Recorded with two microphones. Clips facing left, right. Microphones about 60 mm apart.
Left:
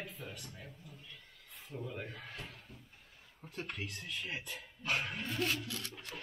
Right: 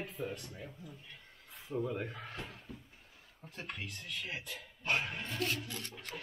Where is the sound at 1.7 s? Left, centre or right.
Right.